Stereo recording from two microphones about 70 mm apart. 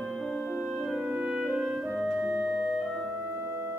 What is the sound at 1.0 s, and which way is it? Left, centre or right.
Clarinet, centre.